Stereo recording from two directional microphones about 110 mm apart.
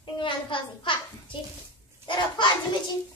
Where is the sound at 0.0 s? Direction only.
50° left (ahead or behind).